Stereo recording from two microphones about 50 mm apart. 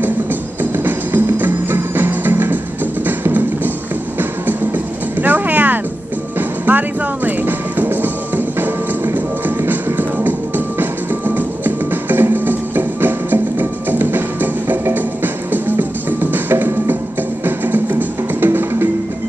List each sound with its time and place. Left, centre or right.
0.0 s music: right